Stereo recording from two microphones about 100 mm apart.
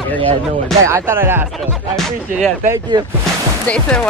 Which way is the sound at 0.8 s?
25° right (ahead or behind).